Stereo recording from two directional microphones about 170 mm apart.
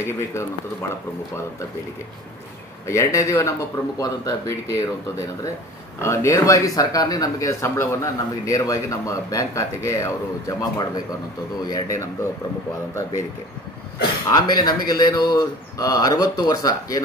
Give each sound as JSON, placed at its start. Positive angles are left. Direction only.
{"t": 0.0, "sound": "a man's voice", "side_deg": 15}
{"t": 2.9, "sound": "a man's voice", "side_deg": 20}
{"t": 5.9, "sound": "a man's voice", "side_deg": 15}
{"t": 14.3, "sound": "speech", "side_deg": 20}